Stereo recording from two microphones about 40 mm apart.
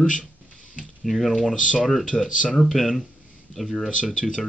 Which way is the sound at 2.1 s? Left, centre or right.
Left.